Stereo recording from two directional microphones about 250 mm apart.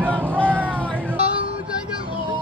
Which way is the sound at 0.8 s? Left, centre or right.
Centre.